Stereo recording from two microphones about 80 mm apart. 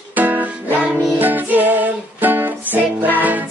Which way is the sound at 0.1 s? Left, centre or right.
Right.